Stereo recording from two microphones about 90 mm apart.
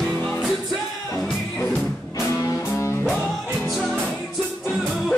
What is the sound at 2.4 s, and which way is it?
Music, 30° left (ahead or behind).